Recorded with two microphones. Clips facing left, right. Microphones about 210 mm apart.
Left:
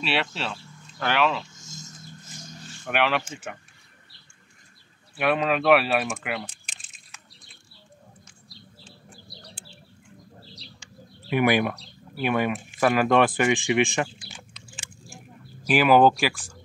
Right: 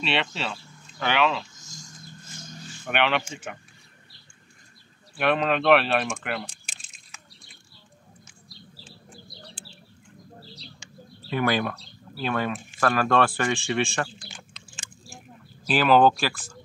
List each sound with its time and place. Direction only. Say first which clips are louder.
0.0 s speech: even; 5° left (ahead or behind)
2.8 s speech: even; centre (ahead or behind)
5.1 s speech: even; 5° left (ahead or behind)
11.2 s speech: left 3 dB; 15° left (ahead or behind)
15.6 s speech: left 1 dB; 10° left (ahead or behind)